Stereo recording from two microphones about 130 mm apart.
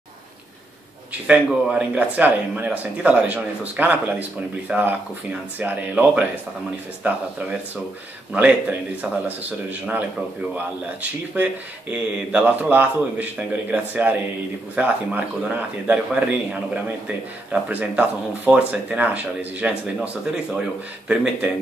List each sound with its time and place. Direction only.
1.2 s a man's voice: 10° right (ahead or behind)
21.1 s a man's voice: 5° right (ahead or behind)